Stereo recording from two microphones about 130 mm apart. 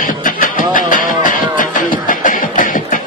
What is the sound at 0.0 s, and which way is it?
Music, 90° left.